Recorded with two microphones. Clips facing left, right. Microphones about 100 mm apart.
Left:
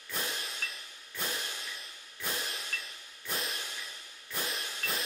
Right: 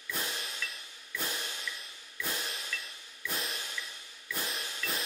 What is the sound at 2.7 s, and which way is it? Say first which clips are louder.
Music: right 1 dB; 50° left (ahead or behind).